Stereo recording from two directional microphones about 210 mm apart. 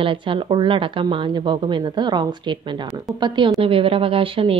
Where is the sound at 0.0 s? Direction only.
25° right (ahead or behind).